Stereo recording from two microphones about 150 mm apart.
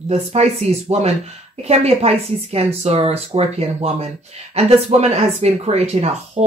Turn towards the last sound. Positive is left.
turn(degrees=-45)  # may be behind; listen again after turning